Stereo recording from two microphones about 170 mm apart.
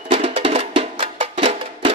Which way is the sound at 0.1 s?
35° right (ahead or behind).